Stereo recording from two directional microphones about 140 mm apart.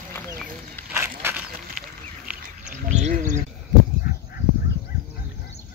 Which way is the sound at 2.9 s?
60° right (ahead or behind).